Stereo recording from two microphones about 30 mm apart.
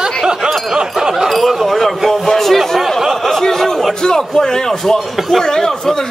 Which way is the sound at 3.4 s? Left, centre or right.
Centre.